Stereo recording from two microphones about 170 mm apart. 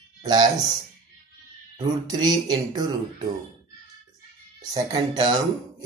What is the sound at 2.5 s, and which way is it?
Speech, 25° right (ahead or behind).